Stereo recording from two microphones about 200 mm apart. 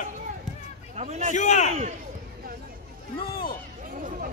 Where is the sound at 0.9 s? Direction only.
35° right (ahead or behind).